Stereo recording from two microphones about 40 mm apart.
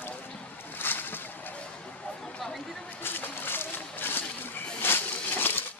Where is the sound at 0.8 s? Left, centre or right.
Left.